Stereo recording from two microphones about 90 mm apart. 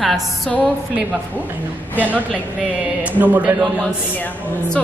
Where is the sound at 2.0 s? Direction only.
20° right (ahead or behind).